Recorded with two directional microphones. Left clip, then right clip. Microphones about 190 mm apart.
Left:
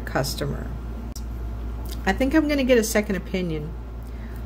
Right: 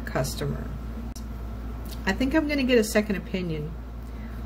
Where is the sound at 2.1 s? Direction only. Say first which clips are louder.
Left 4 dB; 25° left (ahead or behind).